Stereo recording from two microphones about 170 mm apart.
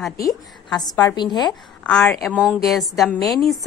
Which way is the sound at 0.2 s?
20° left (ahead or behind).